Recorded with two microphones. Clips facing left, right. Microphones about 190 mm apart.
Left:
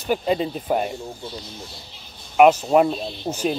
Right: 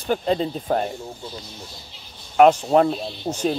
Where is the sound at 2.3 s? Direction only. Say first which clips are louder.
Even; 10° left (ahead or behind).